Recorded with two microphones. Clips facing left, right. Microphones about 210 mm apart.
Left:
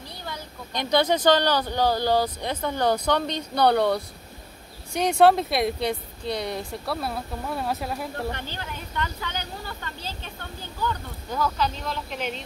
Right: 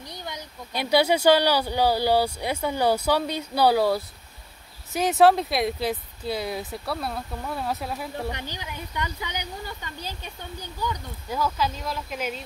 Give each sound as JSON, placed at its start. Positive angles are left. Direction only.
{"t": 0.1, "sound": "a sound", "side_deg": -20}
{"t": 0.7, "sound": "speech", "side_deg": -10}
{"t": 8.3, "sound": "speech", "side_deg": -15}